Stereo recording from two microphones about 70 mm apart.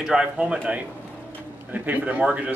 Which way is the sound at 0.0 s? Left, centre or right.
Centre.